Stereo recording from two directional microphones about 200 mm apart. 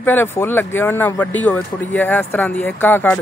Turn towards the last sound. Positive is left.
turn(degrees=10)  # may be behind; listen again after turning